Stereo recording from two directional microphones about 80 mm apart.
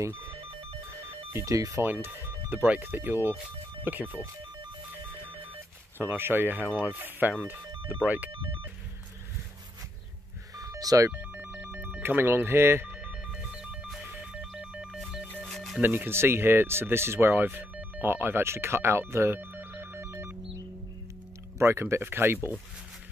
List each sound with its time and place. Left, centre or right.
1.0 s telephone bell ringing: right
1.8 s speech: right
5.9 s speech: right
8.3 s speech: right
10.6 s telephone dialing: right
11.1 s telephone bell ringing: right
13.3 s ringtone: centre
14.3 s telephone bell ringing: centre
15.4 s telephone bell ringing: centre
15.8 s speech: right
21.5 s speech: right